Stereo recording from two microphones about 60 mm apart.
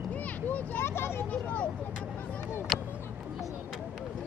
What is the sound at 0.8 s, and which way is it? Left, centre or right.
Vehicle, left.